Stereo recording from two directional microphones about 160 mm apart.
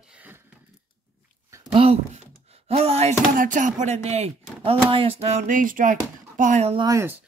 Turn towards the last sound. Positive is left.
turn(degrees=-20)  # may be behind; listen again after turning